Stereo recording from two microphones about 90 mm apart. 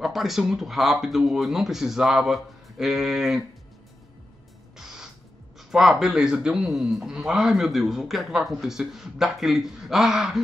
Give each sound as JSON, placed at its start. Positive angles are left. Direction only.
{"t": 0.0, "sound": "a man's voice", "side_deg": 0}
{"t": 4.7, "sound": "music", "side_deg": -5}
{"t": 5.6, "sound": "a man's voice", "side_deg": -5}